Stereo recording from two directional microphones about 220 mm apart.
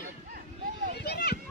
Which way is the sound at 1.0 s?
45° left (ahead or behind).